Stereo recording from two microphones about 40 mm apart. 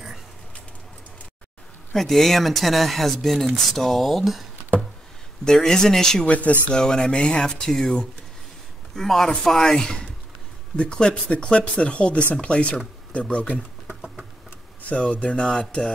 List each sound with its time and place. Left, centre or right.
2.0 s speech: centre
5.4 s speech: centre
6.2 s speech: left
6.7 s speech: centre
8.9 s speech: centre
9.8 s speech: centre
13.8 s typing: centre
14.8 s speech: left